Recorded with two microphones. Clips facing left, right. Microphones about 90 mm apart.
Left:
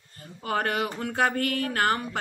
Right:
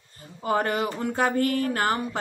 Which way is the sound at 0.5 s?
20° right (ahead or behind).